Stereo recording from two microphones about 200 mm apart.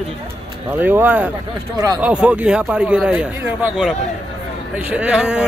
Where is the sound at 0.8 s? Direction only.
10° right (ahead or behind).